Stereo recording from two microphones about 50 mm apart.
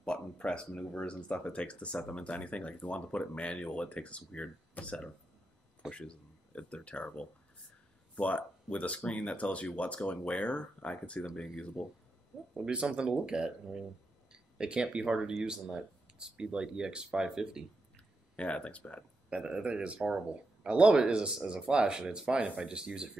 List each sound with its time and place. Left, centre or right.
0.0 s speech: centre
12.5 s speech: centre
17.9 s a sound: left
19.2 s a man's voice: centre